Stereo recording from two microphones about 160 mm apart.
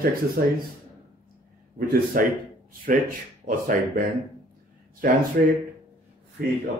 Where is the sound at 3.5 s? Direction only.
60° right (ahead or behind).